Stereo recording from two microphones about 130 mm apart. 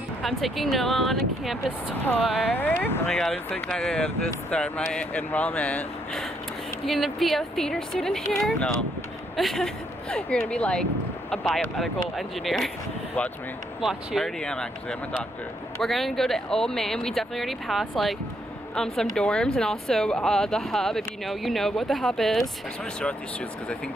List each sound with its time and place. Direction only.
0.2 s speech: centre (ahead or behind)
2.8 s speech: 15° left (ahead or behind)
13.7 s speech: centre (ahead or behind)